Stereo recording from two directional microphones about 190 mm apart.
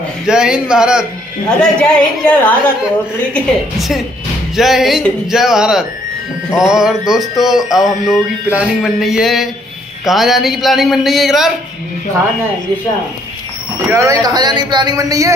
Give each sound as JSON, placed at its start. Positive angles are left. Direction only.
{"t": 0.3, "sound": "speech", "side_deg": -5}
{"t": 1.6, "sound": "speech", "side_deg": 5}
{"t": 13.8, "sound": "speech", "side_deg": -15}